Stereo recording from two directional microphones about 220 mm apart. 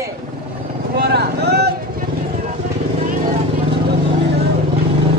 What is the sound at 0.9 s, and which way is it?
Speech, 45° right (ahead or behind).